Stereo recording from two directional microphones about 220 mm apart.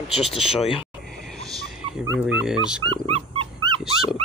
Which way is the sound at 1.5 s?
Centre (ahead or behind).